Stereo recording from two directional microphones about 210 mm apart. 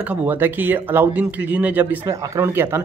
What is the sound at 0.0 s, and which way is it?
Speech, 5° right (ahead or behind).